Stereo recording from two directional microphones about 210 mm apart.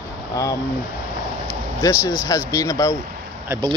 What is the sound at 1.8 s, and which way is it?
Speech, 15° left (ahead or behind).